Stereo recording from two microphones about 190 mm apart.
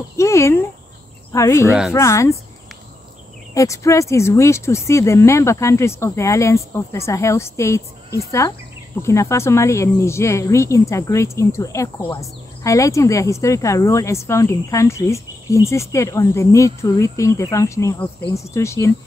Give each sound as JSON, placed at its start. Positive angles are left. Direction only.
{"t": 0.2, "sound": "speech", "side_deg": 15}
{"t": 1.7, "sound": "speech", "side_deg": -5}
{"t": 2.0, "sound": "speech", "side_deg": 15}
{"t": 3.5, "sound": "speech", "side_deg": 15}